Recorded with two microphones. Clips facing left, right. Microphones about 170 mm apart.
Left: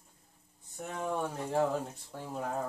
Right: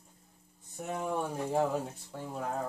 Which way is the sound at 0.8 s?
10° right (ahead or behind).